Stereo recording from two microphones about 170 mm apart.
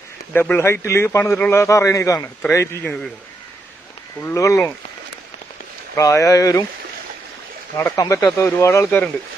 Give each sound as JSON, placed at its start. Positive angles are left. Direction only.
{"t": 0.3, "sound": "a man's voice", "side_deg": 10}
{"t": 4.2, "sound": "a man's voice", "side_deg": 15}
{"t": 5.9, "sound": "speech", "side_deg": 20}
{"t": 7.7, "sound": "a man's voice", "side_deg": 15}